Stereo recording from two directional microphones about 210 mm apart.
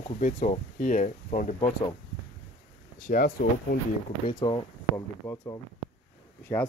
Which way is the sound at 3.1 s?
40° left (ahead or behind).